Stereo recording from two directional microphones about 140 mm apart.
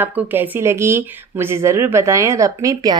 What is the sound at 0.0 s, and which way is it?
Speech, 15° right (ahead or behind).